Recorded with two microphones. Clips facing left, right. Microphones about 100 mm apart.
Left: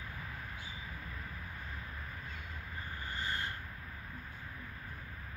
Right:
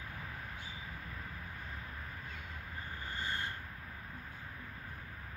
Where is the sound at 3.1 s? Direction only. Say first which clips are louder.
Left 1 dB; 25° right (ahead or behind).